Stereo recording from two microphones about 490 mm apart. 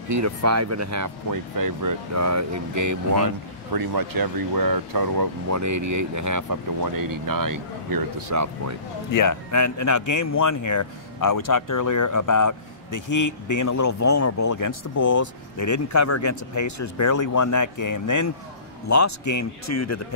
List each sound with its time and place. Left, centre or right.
0.1 s speech: right
9.1 s speech: left